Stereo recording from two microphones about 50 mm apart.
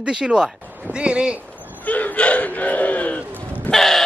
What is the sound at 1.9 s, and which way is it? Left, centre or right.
Speech, left.